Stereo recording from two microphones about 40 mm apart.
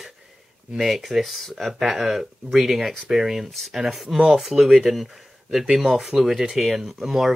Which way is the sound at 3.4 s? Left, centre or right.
Centre.